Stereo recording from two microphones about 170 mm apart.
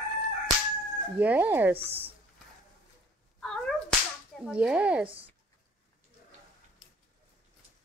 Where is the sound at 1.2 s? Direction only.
10° right (ahead or behind).